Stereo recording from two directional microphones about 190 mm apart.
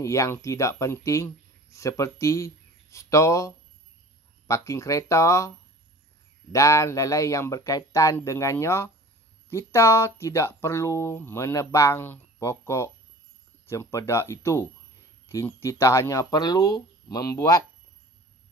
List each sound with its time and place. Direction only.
0.0 s speech: 15° left (ahead or behind)
6.5 s speech: 15° left (ahead or behind)